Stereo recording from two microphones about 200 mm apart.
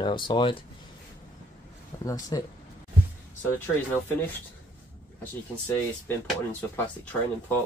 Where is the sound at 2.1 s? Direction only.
15° left (ahead or behind).